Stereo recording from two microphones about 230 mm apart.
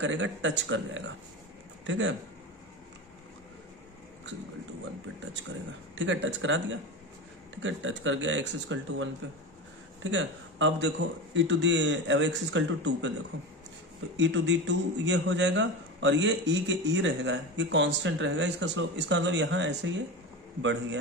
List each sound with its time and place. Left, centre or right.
0.0 s a man's voice: right
5.9 s a man's voice: right
10.1 s a man's voice: right
14.1 s a man's voice: right